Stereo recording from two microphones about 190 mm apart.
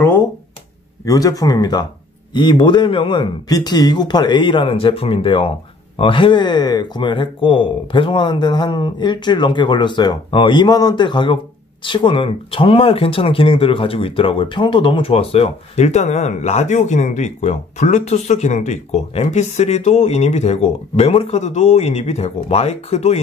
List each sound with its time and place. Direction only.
1.0 s speech: 20° left (ahead or behind); by 23.2 s 35° left (ahead or behind)